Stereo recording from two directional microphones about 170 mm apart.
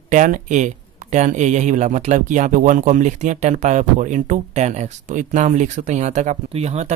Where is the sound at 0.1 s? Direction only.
45° right (ahead or behind).